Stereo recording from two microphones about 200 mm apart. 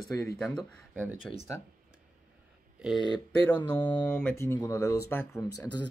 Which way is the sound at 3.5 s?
5° left (ahead or behind).